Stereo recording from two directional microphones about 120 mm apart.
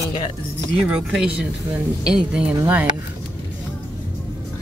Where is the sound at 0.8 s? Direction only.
5° right (ahead or behind).